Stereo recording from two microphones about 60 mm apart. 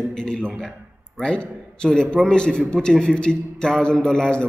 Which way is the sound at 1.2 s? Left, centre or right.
Centre.